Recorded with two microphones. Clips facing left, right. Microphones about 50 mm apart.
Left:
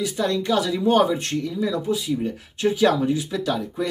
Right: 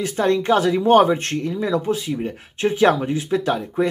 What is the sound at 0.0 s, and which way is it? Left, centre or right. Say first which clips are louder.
Speech: right 4 dB; right.